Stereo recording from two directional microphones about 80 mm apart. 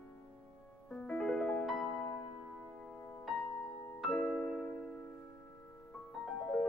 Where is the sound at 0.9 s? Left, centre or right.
Centre.